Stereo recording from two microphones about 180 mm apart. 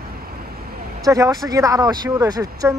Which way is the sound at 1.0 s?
20° right (ahead or behind).